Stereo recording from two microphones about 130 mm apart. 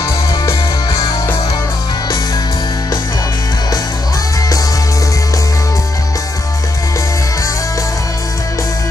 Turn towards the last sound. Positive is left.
turn(degrees=25)  # may be behind; listen again after turning